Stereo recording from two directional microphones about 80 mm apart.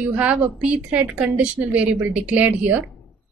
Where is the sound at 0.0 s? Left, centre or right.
Centre.